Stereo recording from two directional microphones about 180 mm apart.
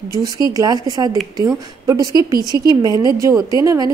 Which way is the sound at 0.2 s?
20° right (ahead or behind).